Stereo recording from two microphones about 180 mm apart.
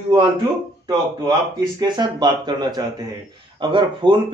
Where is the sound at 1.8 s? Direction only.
25° right (ahead or behind).